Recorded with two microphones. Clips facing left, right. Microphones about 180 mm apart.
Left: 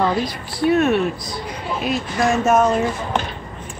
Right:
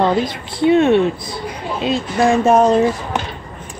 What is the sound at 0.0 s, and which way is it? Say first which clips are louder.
A woman's voice: right 4 dB; 25° right (ahead or behind).